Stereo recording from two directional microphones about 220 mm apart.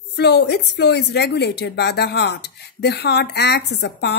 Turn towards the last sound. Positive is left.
turn(degrees=50)  # may be behind; listen again after turning